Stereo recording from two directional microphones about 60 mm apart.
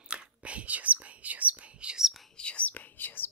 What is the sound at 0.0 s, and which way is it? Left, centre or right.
Whispering, centre.